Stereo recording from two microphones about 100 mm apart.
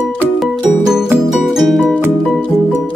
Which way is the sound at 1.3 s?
Centre (ahead or behind).